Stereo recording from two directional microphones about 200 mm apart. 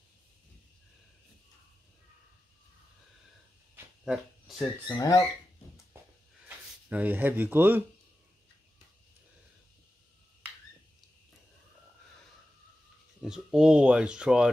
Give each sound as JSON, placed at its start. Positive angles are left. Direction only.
{"t": 3.7, "sound": "a sound", "side_deg": -5}
{"t": 4.8, "sound": "speech", "side_deg": 20}
{"t": 6.9, "sound": "speech", "side_deg": -10}
{"t": 13.2, "sound": "speech", "side_deg": -5}